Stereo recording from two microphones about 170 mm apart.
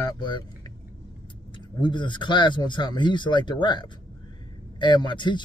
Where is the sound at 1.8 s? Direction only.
25° left (ahead or behind).